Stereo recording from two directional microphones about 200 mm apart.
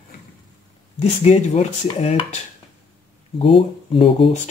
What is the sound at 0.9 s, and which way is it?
Speech, 35° left (ahead or behind).